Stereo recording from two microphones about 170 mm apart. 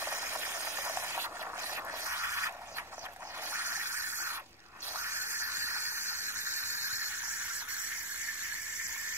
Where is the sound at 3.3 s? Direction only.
15° right (ahead or behind).